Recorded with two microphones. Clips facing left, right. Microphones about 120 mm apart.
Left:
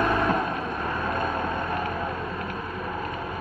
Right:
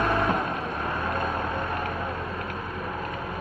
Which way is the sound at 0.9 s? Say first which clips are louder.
Left 1 dB; 5° right (ahead or behind).